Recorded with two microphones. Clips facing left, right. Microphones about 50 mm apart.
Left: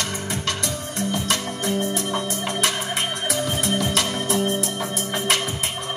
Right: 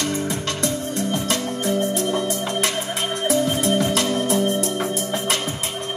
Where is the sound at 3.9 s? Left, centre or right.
Left.